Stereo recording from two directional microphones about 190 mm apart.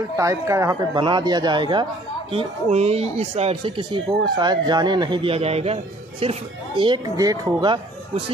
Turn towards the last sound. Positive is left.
turn(degrees=-20)  # may be behind; listen again after turning